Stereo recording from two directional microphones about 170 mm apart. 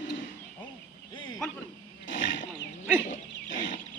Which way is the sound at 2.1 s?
90° left.